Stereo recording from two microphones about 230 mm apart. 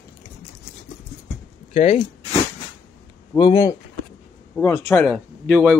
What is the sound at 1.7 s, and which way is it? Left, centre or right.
Speech, left.